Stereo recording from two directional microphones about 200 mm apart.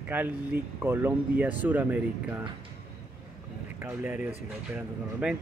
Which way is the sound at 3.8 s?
10° right (ahead or behind).